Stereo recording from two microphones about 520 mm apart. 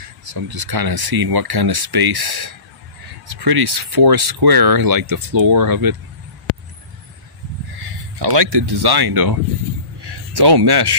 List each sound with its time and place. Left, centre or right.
0.2 s speech: right
7.8 s speech: right